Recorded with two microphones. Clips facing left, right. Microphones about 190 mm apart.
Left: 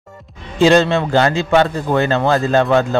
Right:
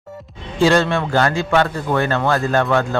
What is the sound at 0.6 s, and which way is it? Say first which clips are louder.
A man's voice: left 3 dB; 20° left (ahead or behind).